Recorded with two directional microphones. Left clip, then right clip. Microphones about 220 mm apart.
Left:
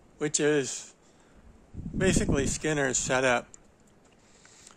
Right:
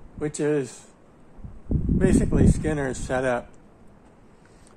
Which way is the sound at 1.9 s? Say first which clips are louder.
Right 4 dB; 45° left (ahead or behind).